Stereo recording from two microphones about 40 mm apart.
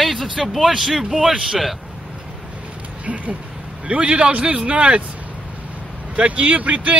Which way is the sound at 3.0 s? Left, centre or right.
Right.